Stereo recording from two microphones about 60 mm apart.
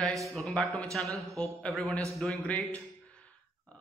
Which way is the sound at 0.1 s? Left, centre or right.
Centre.